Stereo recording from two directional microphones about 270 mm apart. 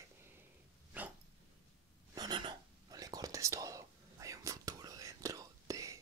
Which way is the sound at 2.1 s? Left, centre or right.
Centre.